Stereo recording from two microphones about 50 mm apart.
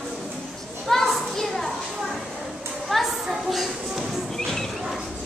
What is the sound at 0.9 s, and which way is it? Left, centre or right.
Children playing, centre.